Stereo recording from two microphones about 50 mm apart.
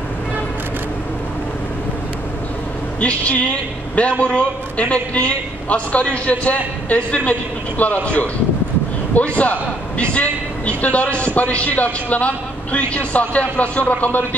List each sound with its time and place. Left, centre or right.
3.0 s a man's voice: left